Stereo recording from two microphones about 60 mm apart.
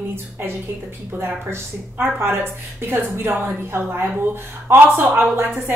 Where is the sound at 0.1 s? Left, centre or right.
Right.